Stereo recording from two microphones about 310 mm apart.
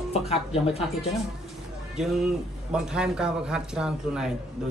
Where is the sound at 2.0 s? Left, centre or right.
Centre.